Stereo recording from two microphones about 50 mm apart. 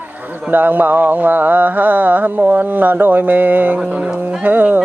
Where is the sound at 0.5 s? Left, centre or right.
Right.